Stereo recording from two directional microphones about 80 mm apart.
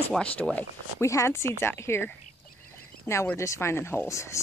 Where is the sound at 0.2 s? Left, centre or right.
Centre.